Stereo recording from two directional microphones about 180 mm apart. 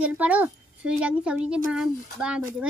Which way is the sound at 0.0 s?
10° right (ahead or behind).